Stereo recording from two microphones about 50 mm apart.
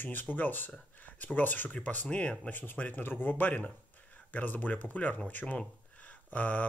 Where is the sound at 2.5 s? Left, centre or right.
Left.